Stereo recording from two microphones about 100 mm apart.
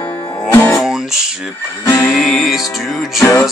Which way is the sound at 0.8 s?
5° right (ahead or behind).